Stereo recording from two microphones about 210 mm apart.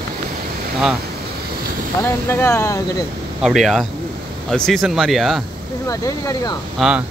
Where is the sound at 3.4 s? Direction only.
Centre (ahead or behind).